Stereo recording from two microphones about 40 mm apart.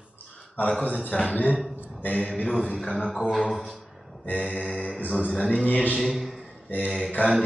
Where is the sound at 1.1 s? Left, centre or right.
Left.